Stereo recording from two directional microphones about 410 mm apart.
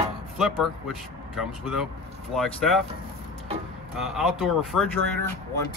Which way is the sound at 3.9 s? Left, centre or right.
Centre.